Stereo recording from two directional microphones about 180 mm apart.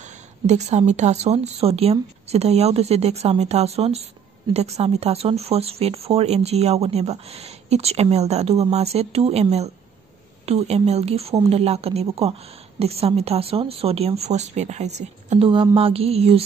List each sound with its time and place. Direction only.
0.5 s speech: 40° right (ahead or behind)